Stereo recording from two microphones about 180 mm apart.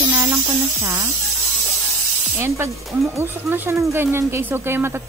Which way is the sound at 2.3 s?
15° right (ahead or behind).